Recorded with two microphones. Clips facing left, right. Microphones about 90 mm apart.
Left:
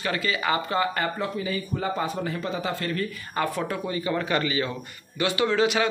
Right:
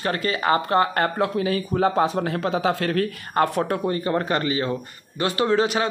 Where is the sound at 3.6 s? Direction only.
50° right (ahead or behind).